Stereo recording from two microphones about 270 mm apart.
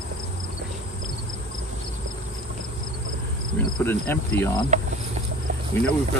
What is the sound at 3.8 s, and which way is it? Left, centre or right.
Speech, centre.